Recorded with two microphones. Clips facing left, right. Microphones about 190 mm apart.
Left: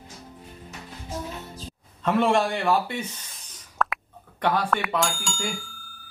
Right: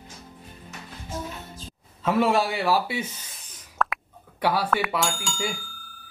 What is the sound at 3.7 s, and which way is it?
Bicycle bell, centre (ahead or behind).